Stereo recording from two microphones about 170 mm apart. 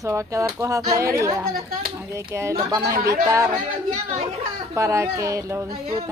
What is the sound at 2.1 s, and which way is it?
Speech, 15° right (ahead or behind).